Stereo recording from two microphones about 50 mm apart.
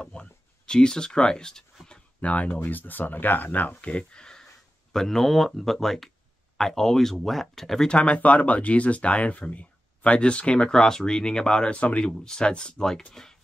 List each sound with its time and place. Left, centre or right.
0.0 s a sound: centre
2.2 s speech: left; by 7.9 s centre
7.9 s speech: left
10.8 s speech: centre